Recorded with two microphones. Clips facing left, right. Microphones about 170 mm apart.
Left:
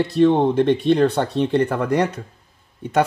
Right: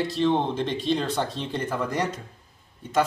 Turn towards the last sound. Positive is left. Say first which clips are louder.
# left 5 dB
turn(degrees=65)  # may be behind; listen again after turning